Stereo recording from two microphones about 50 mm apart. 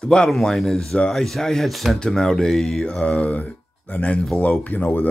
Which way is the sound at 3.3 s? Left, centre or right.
Left.